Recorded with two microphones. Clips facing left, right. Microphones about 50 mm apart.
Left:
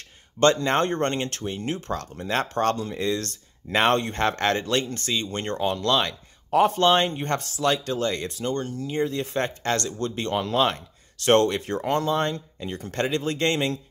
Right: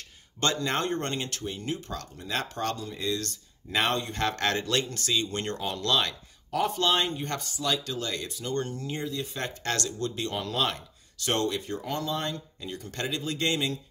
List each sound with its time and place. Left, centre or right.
0.4 s speech: left
1.7 s speech: left
4.1 s speech: left
4.5 s speech: left
6.5 s speech: left
7.3 s speech: left
7.6 s speech: left
8.5 s speech: centre
9.0 s speech: left
9.4 s speech: left
9.9 s speech: left
10.3 s speech: left
11.2 s speech: left